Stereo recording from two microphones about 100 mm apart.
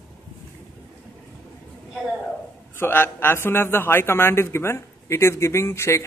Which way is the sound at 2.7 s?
25° left (ahead or behind).